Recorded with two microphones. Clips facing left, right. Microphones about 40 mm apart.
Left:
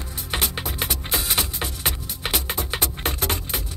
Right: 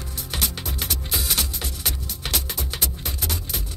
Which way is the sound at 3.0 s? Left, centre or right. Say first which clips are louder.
Left 5 dB; left.